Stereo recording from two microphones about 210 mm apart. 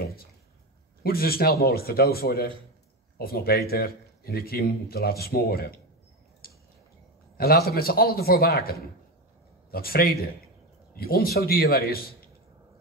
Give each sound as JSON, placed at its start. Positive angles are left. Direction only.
{"t": 1.0, "sound": "a man's voice", "side_deg": 45}
{"t": 6.4, "sound": "a sound", "side_deg": 45}
{"t": 7.3, "sound": "a man's voice", "side_deg": 45}